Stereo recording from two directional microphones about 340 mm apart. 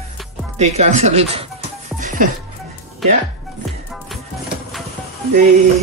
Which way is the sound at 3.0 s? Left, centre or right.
Centre.